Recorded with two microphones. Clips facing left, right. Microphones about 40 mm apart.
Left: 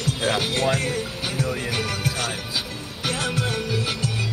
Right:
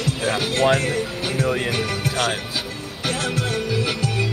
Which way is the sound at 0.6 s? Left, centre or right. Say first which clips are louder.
Right 8 dB; right.